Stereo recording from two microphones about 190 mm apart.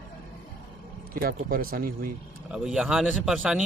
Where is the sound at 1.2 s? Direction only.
50° right (ahead or behind).